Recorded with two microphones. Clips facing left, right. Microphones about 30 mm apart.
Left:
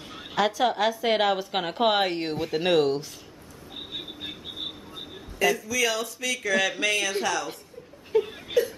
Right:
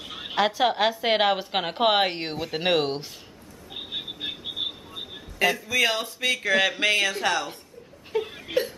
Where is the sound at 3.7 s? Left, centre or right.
Right.